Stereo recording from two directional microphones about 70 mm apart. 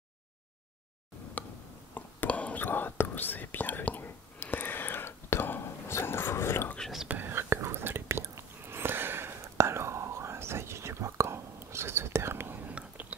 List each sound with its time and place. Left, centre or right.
1.4 s a sound: left
2.0 s whispering: left
7.1 s whispering: right